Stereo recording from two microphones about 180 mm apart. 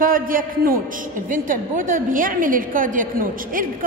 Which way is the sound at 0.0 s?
50° right (ahead or behind).